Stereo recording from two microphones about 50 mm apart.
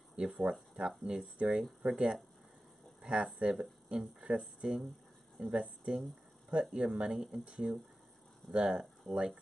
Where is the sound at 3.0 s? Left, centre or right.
Centre.